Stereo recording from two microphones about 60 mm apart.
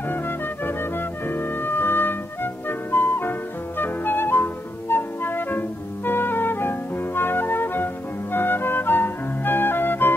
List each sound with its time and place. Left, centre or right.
0.7 s music: left